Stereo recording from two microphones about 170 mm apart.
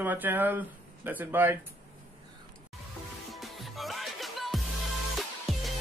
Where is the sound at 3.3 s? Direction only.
Centre (ahead or behind).